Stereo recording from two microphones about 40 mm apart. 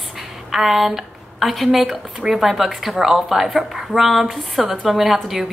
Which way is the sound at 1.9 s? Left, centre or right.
Centre.